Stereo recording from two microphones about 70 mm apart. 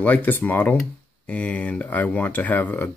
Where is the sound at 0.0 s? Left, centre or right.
Left.